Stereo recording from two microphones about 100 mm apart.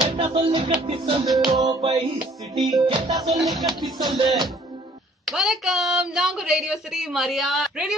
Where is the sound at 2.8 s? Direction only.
60° right (ahead or behind).